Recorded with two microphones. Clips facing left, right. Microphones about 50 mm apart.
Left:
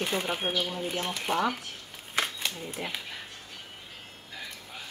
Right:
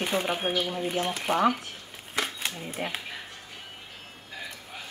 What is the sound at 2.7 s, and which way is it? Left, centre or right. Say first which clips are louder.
Speech: right 3 dB; right.